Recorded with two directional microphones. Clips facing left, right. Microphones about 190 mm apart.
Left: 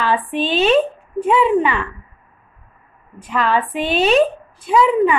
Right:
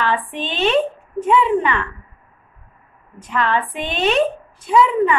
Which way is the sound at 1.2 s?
20° left (ahead or behind).